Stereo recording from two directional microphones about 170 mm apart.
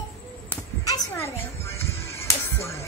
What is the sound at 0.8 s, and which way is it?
Music, 20° left (ahead or behind).